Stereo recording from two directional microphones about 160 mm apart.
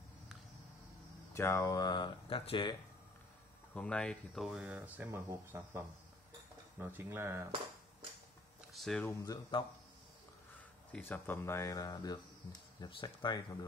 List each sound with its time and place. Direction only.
1.3 s speech: 15° left (ahead or behind); by 2.7 s 35° left (ahead or behind)
3.7 s speech: 5° left (ahead or behind); by 7.4 s 15° right (ahead or behind)
8.7 s a sound: centre (ahead or behind)
9.0 s speech: 20° left (ahead or behind)
10.9 s speech: 10° left (ahead or behind)